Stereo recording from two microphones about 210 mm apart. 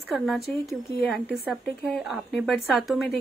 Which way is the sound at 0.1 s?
Centre (ahead or behind).